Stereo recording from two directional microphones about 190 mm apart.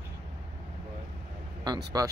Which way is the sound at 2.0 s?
20° right (ahead or behind).